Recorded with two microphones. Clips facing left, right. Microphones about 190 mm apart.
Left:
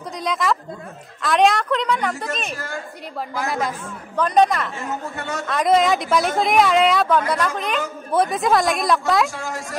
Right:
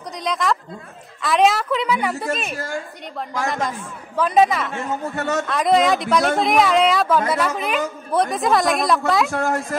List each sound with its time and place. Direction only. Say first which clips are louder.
0.2 s a woman's voice: even; centre (ahead or behind)
9.3 s speech: right 8 dB; 60° right (ahead or behind)